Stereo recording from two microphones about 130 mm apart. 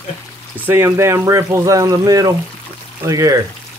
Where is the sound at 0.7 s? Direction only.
20° right (ahead or behind).